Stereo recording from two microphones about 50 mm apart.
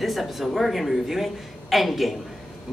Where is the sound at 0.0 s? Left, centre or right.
Centre.